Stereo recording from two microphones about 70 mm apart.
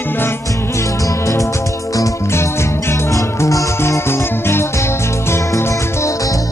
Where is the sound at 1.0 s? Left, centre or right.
Left.